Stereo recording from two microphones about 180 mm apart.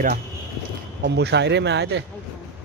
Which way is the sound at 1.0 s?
70° right (ahead or behind).